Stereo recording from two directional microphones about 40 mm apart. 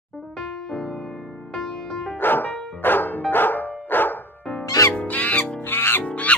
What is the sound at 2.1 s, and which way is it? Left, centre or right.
Music, left.